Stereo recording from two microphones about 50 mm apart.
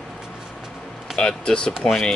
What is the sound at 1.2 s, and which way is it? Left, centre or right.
Speech, centre.